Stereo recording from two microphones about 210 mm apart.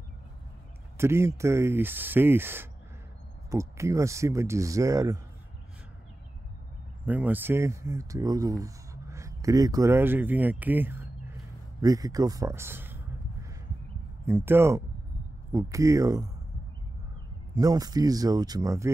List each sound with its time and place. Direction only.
0.9 s speech: 10° right (ahead or behind)
7.1 s speech: 10° right (ahead or behind)
17.6 s speech: 15° right (ahead or behind)